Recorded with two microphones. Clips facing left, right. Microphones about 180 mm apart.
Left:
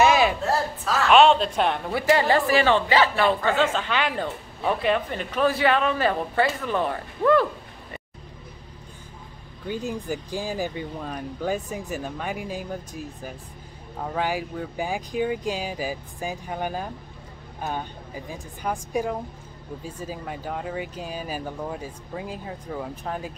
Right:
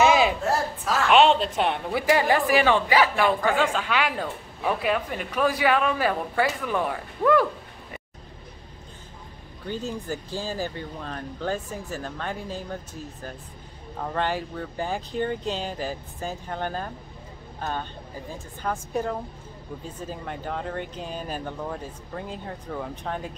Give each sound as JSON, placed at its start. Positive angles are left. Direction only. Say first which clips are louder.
{"t": 0.0, "sound": "a sound", "louder": "even", "side_deg": -15}
{"t": 1.1, "sound": "speech", "louder": "left 2 dB", "side_deg": -15}
{"t": 9.7, "sound": "speech", "louder": "left 2 dB", "side_deg": 15}